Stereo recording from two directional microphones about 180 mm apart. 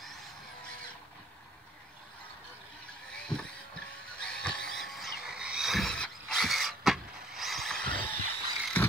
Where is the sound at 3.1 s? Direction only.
5° left (ahead or behind).